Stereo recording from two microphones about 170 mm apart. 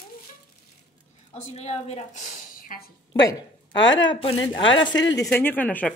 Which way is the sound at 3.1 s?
25° left (ahead or behind).